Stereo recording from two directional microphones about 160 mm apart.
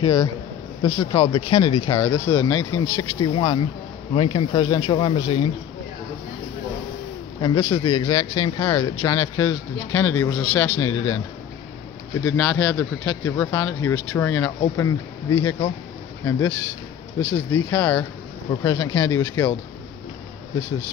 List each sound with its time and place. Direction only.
0.0 s speech: 20° left (ahead or behind)
2.0 s speech: 15° left (ahead or behind)
7.4 s speech: 30° left (ahead or behind)
12.3 s speech: 10° left (ahead or behind)